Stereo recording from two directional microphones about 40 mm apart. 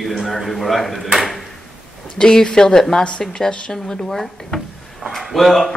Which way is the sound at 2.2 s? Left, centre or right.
Centre.